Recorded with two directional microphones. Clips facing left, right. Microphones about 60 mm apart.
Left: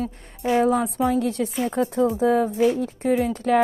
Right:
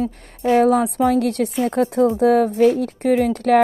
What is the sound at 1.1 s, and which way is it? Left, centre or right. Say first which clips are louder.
Music: right 4 dB; right.